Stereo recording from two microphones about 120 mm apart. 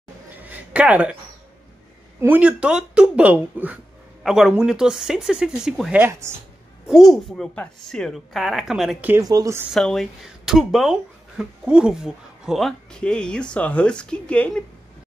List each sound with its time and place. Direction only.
0.4 s a sound: 15° right (ahead or behind)
2.1 s speech: 15° right (ahead or behind)
4.2 s speech: 5° right (ahead or behind)
5.9 s speech: 20° right (ahead or behind)
6.9 s speech: centre (ahead or behind)
9.2 s speech: 30° right (ahead or behind)
9.7 s speech: 5° left (ahead or behind)